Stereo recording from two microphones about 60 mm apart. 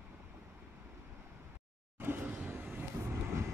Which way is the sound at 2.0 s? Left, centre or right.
Right.